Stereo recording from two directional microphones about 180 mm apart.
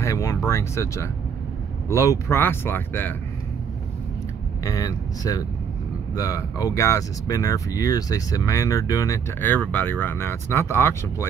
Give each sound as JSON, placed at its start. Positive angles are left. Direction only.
{"t": 0.0, "sound": "speech", "side_deg": 20}
{"t": 4.6, "sound": "speech", "side_deg": 20}